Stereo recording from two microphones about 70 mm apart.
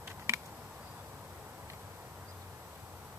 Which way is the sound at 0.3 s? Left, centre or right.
Right.